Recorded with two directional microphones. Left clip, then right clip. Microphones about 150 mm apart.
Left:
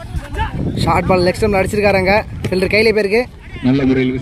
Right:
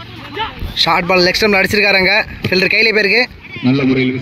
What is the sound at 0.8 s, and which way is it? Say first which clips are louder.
Speech: right 2 dB; 5° left (ahead or behind).